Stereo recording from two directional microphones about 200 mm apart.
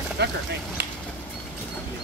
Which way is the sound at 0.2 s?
55° right (ahead or behind).